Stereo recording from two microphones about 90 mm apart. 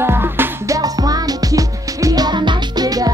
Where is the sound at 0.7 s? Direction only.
45° right (ahead or behind).